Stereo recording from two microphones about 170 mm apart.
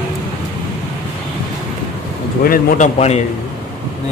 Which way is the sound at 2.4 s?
55° left (ahead or behind).